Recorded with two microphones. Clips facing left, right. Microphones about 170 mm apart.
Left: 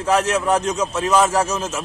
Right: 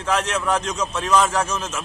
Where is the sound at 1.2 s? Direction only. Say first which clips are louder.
Left 3 dB; 30° left (ahead or behind).